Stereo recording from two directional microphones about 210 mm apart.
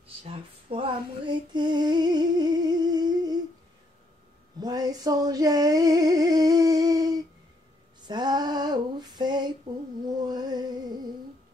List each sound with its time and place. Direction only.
0.2 s female singing: 25° right (ahead or behind)
4.6 s female singing: 20° right (ahead or behind)
10.0 s a sound: 20° right (ahead or behind)